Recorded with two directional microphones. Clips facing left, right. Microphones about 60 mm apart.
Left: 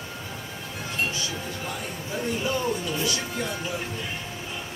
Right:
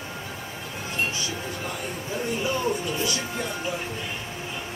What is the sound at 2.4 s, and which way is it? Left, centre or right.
Speech, right.